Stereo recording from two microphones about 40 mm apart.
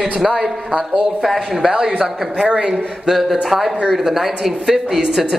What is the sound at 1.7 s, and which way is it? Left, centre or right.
Speech, right.